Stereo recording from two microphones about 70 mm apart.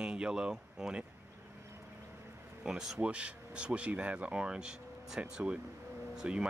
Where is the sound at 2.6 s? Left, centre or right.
Centre.